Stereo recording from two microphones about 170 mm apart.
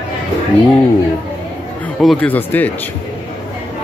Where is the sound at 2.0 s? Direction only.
5° left (ahead or behind).